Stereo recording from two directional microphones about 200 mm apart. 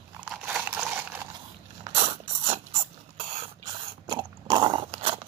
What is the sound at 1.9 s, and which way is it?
Crunch, 30° right (ahead or behind).